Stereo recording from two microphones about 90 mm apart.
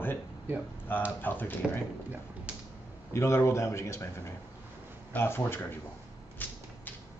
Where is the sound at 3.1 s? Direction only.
30° left (ahead or behind).